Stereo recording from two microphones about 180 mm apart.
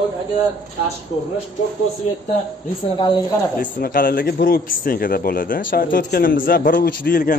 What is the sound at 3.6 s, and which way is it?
A man's voice, 55° left (ahead or behind).